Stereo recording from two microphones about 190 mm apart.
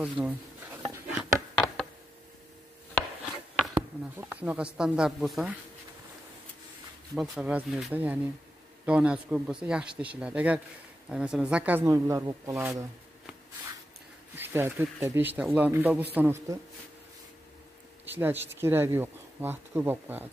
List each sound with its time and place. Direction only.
0.0 s a sound: 10° right (ahead or behind)
4.2 s speech: 10° right (ahead or behind)
7.2 s speech: 5° right (ahead or behind)
14.3 s speech: 10° right (ahead or behind)
18.0 s speech: 10° right (ahead or behind)